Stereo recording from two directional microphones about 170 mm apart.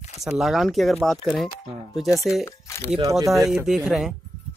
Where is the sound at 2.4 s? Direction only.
15° left (ahead or behind).